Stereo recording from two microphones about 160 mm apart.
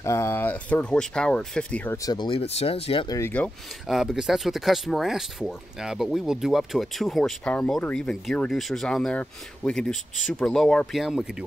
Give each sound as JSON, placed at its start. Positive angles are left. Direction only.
{"t": 0.0, "sound": "speech", "side_deg": 15}
{"t": 2.0, "sound": "speech", "side_deg": 30}
{"t": 3.1, "sound": "speech", "side_deg": 15}
{"t": 3.8, "sound": "speech", "side_deg": 0}